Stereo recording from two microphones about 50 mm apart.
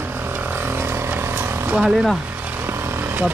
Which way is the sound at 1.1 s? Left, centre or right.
Right.